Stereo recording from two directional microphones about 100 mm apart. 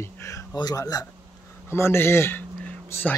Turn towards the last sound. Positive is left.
turn(degrees=20)  # may be behind; listen again after turning